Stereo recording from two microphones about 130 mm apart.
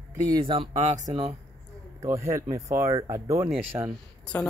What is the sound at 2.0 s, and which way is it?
Speech, 20° right (ahead or behind).